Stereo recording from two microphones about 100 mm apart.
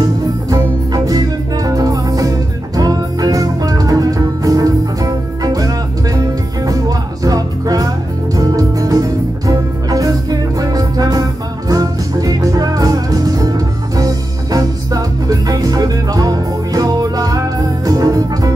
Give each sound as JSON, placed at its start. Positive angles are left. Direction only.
{"t": 0.5, "sound": "music", "side_deg": -35}